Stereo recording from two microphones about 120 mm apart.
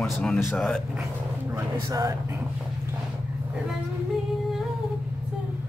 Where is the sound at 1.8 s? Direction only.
30° right (ahead or behind).